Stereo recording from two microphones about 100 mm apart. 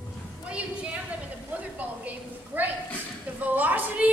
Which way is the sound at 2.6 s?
15° right (ahead or behind).